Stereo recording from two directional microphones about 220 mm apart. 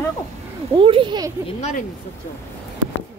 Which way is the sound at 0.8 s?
25° right (ahead or behind).